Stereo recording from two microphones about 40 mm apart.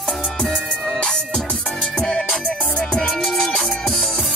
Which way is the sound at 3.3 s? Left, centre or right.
Centre.